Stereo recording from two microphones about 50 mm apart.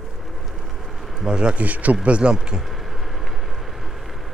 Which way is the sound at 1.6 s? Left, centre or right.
Right.